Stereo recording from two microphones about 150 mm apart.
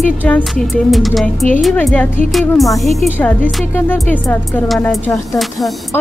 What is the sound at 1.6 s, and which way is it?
Speech, 5° left (ahead or behind).